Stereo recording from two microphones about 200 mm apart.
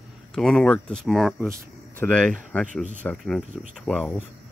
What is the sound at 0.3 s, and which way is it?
Speech, centre (ahead or behind).